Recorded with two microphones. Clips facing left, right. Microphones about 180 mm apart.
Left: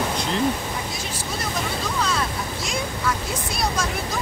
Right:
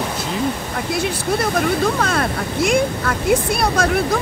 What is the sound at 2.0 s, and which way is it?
Speech, 55° right (ahead or behind).